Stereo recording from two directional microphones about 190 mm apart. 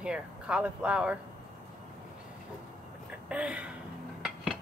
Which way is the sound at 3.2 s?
5° right (ahead or behind).